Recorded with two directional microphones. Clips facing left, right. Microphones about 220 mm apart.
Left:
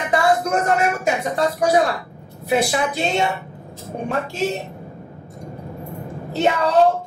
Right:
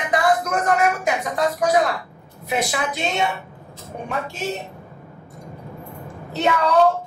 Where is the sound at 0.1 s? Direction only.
30° left (ahead or behind).